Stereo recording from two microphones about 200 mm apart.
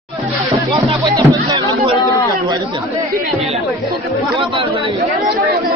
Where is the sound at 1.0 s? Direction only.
25° right (ahead or behind).